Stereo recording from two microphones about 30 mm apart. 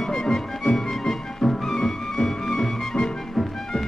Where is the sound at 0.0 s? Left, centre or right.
Centre.